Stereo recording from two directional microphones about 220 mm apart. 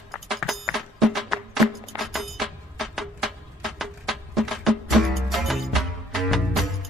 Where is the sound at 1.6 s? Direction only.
15° right (ahead or behind).